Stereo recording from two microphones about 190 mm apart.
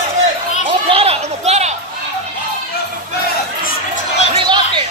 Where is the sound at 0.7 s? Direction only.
30° right (ahead or behind).